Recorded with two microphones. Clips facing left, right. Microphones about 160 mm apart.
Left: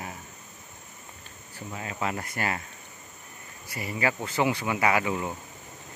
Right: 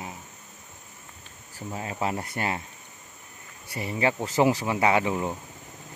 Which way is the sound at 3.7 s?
25° right (ahead or behind).